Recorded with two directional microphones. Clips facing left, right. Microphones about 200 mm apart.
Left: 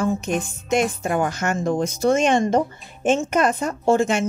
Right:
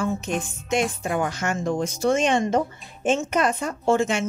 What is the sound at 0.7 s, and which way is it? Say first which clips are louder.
Speech: left 3 dB; 45° left (ahead or behind).